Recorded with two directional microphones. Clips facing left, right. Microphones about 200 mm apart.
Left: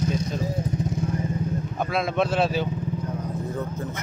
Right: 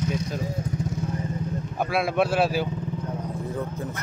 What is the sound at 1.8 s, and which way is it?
Speech, 10° right (ahead or behind).